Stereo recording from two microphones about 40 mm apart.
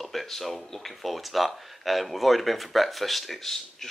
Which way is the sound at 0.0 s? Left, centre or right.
Centre.